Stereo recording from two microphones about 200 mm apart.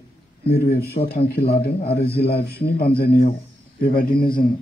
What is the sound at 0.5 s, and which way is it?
A man's voice, 50° left (ahead or behind).